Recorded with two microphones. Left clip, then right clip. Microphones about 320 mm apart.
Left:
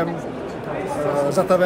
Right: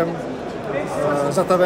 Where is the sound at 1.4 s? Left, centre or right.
Centre.